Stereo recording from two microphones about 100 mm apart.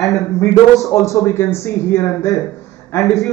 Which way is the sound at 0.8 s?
30° left (ahead or behind).